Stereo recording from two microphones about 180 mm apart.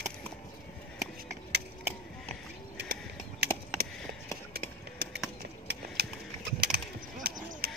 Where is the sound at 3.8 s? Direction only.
55° right (ahead or behind).